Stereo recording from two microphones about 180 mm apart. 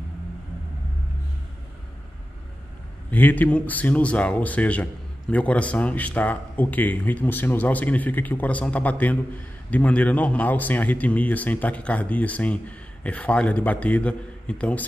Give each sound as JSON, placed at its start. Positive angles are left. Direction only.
{"t": 3.1, "sound": "speech", "side_deg": 10}